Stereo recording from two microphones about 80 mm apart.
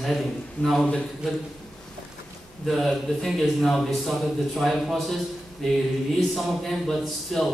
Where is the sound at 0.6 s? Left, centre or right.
Left.